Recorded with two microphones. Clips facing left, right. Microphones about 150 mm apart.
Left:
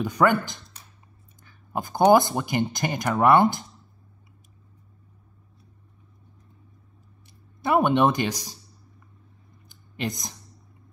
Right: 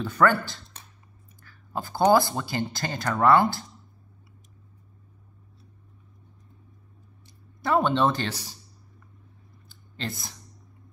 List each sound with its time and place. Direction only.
0.0 s speech: 15° left (ahead or behind)
7.6 s speech: 15° left (ahead or behind)
9.7 s a sound: 15° left (ahead or behind)